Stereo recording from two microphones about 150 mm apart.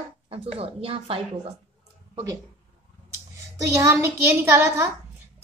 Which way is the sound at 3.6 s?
20° right (ahead or behind).